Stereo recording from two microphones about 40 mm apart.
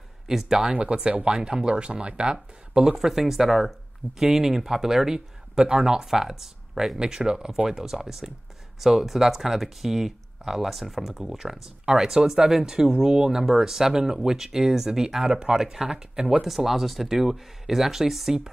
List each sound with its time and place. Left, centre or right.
0.3 s speech: centre
0.7 s speech: right; by 7.0 s centre
7.0 s speech: centre